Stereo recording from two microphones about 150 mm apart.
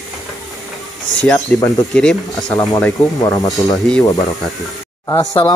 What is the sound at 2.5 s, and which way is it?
Speech, 25° left (ahead or behind).